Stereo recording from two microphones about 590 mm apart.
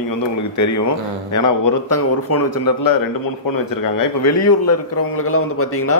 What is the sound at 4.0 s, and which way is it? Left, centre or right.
A man's voice, left.